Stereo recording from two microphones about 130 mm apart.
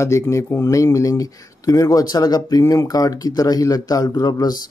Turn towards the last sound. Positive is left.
turn(degrees=30)  # may be behind; listen again after turning